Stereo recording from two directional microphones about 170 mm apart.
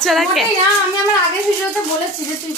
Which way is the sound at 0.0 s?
Centre (ahead or behind).